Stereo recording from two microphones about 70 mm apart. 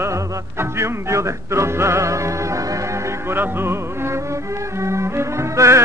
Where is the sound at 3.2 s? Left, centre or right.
Right.